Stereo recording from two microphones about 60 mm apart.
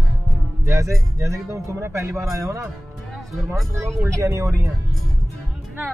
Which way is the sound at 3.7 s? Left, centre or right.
Right.